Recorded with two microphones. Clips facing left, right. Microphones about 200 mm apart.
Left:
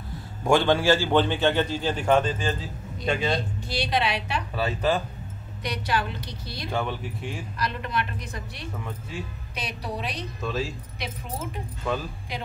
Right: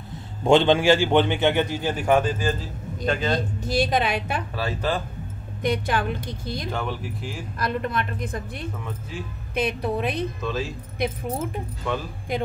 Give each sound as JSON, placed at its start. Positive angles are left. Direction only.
{"t": 0.4, "sound": "a man's voice", "side_deg": -20}
{"t": 3.1, "sound": "speech", "side_deg": 5}
{"t": 3.3, "sound": "a woman's voice", "side_deg": -45}
{"t": 4.6, "sound": "speech", "side_deg": 0}
{"t": 5.6, "sound": "a woman's voice", "side_deg": -50}
{"t": 6.7, "sound": "speech", "side_deg": 0}
{"t": 7.5, "sound": "a woman's voice", "side_deg": -50}
{"t": 10.4, "sound": "speech", "side_deg": 0}
{"t": 12.3, "sound": "a woman's voice", "side_deg": -50}